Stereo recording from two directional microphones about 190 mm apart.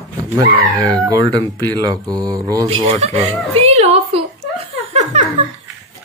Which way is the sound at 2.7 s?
30° right (ahead or behind).